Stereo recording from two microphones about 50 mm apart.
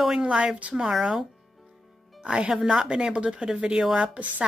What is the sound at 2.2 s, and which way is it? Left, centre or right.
A woman's voice, centre.